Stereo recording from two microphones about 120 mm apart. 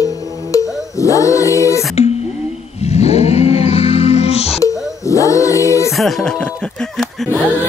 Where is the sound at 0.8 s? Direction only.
25° left (ahead or behind).